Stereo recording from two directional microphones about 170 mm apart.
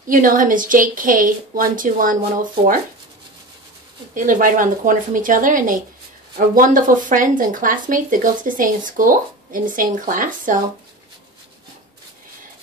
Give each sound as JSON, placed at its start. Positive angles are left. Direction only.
{"t": 0.1, "sound": "speech", "side_deg": -55}
{"t": 4.1, "sound": "speech", "side_deg": -50}